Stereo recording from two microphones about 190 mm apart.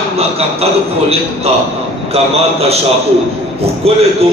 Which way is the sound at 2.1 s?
30° right (ahead or behind).